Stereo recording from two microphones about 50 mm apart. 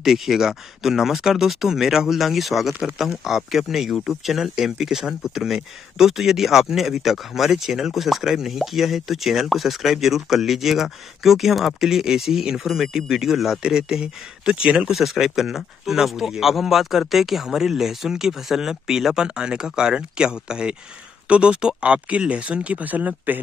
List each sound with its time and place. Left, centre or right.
0.0 s speech: centre
14.9 s speech: centre; by 23.4 s right